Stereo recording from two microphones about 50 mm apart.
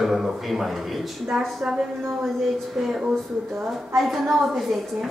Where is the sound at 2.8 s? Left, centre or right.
Centre.